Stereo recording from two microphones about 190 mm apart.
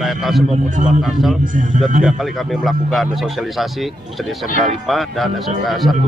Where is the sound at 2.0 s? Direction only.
Centre (ahead or behind).